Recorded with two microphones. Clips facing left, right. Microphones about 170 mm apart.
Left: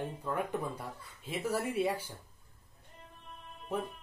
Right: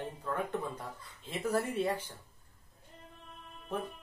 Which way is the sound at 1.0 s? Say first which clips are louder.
Left 1 dB; 10° left (ahead or behind).